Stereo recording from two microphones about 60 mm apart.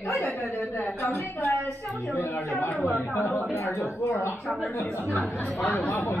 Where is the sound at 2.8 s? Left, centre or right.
Left.